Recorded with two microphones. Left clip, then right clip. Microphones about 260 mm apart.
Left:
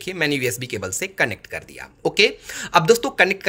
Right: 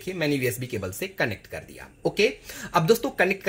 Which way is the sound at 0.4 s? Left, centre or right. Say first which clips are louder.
Left 4 dB; left.